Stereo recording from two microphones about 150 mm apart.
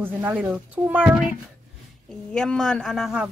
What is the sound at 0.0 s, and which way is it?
Speech, 10° right (ahead or behind).